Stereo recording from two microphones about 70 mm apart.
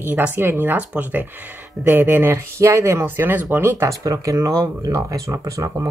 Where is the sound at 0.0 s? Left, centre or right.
Right.